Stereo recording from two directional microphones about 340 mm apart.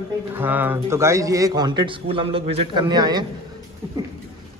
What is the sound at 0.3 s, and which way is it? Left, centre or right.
Speech, centre.